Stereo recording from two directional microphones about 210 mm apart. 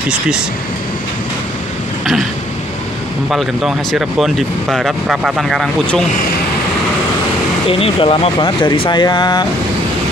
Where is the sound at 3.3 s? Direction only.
Centre (ahead or behind).